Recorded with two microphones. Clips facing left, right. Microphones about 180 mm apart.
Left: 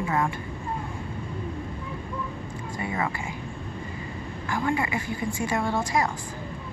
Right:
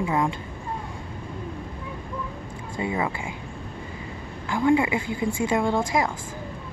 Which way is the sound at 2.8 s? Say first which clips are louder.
Right 3 dB; 10° right (ahead or behind).